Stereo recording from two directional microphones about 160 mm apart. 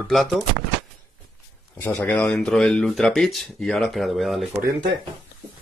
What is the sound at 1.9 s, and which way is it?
Speech, 10° left (ahead or behind).